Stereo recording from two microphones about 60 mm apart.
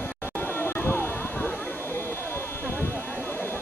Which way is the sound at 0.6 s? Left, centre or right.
Left.